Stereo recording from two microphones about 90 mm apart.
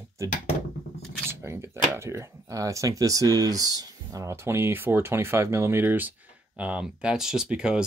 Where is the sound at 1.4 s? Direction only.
30° right (ahead or behind).